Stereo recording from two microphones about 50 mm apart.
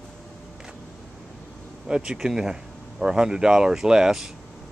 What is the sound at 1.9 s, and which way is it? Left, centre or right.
Speech, centre.